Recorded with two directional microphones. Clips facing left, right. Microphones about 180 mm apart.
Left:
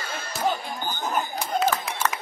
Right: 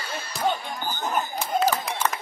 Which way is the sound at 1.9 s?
Centre (ahead or behind).